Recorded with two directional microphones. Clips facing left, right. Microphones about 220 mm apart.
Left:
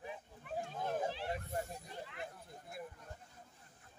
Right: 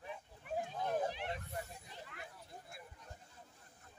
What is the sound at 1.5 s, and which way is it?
Snake, 45° left (ahead or behind).